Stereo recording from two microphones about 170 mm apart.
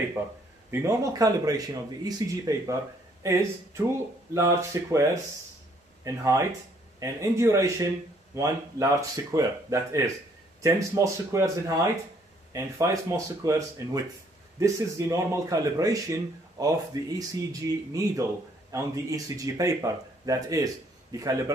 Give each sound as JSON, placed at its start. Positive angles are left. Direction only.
{"t": 0.7, "sound": "speech", "side_deg": -15}